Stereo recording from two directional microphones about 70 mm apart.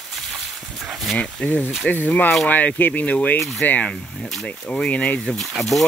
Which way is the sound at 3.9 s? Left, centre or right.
Centre.